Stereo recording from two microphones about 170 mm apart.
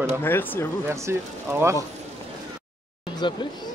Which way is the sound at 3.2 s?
25° left (ahead or behind).